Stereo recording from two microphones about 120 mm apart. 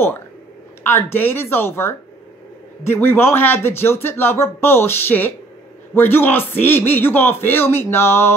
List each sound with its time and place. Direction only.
0.8 s a man's voice: 20° left (ahead or behind)